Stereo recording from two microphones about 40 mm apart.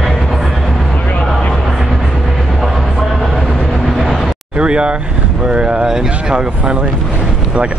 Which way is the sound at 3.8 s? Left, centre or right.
Centre.